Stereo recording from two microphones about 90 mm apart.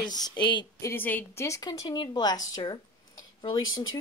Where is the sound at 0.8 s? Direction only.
25° left (ahead or behind).